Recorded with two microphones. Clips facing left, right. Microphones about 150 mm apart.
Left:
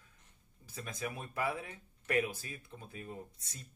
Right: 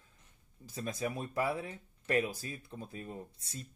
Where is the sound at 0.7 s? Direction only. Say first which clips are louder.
Right 5 dB; 35° right (ahead or behind).